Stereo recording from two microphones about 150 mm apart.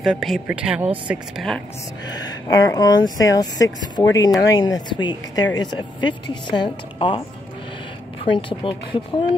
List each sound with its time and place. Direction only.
0.0 s speech: centre (ahead or behind)
2.1 s speech: 25° left (ahead or behind)
8.3 s speech: 35° left (ahead or behind)